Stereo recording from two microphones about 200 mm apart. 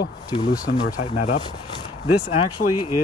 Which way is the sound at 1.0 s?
45° left (ahead or behind).